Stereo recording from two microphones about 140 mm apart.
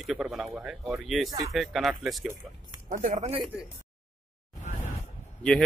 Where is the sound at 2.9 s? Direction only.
80° right.